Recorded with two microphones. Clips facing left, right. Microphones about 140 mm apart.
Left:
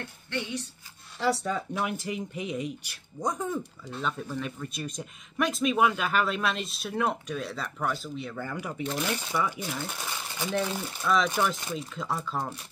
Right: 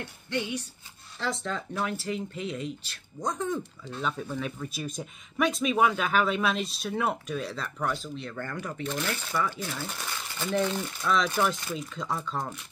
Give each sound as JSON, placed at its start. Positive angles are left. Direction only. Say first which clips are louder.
{"t": 0.3, "sound": "speech", "louder": "right 2 dB", "side_deg": -15}
{"t": 1.2, "sound": "speech", "louder": "left 4 dB", "side_deg": 10}